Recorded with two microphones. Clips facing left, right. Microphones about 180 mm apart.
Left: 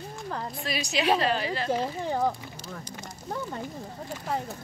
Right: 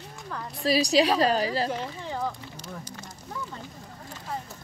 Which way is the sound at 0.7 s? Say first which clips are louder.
Right 5 dB; 35° right (ahead or behind).